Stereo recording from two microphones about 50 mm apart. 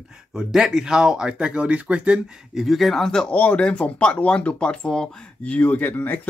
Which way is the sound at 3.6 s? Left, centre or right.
Left.